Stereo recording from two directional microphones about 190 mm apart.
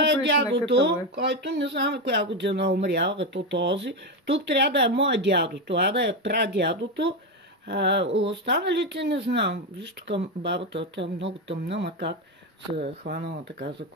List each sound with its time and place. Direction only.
0.0 s speech: 65° right (ahead or behind)